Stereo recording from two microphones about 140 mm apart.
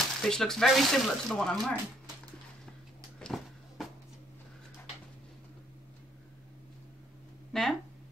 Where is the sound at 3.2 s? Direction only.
Centre (ahead or behind).